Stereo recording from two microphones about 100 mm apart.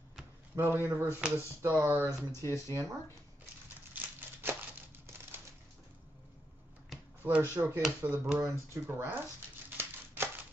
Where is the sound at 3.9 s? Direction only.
20° right (ahead or behind).